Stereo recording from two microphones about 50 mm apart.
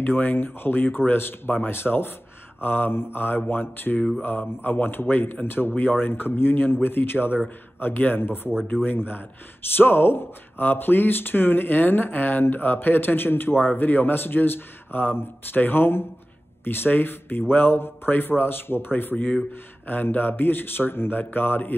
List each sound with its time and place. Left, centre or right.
0.0 s speech: left